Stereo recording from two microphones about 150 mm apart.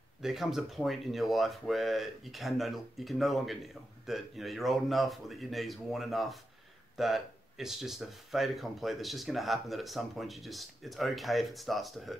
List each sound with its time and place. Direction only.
0.2 s speech: 5° right (ahead or behind)